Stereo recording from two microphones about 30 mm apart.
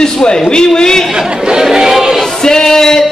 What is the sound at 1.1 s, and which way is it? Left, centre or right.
Chatter, right.